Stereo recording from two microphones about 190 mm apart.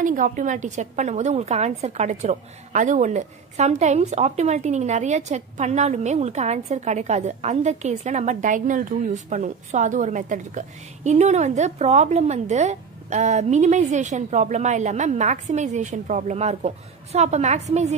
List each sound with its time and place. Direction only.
0.0 s a woman's voice: 45° right (ahead or behind)